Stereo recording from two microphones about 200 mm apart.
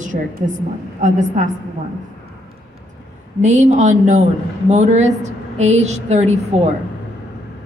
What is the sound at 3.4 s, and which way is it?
A man's voice, 35° right (ahead or behind).